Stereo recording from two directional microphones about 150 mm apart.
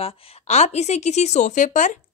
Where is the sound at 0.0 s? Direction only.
50° left (ahead or behind).